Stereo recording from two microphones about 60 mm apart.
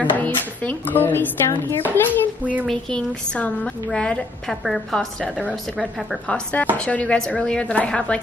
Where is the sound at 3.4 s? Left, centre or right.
Left; by 6.1 s centre.